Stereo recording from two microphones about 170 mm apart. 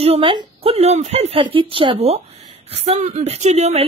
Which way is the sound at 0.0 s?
30° right (ahead or behind).